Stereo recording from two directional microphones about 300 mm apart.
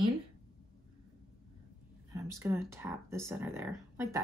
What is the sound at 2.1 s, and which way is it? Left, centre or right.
Speech, centre.